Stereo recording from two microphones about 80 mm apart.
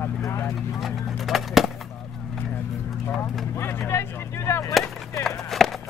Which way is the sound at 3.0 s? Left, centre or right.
Left.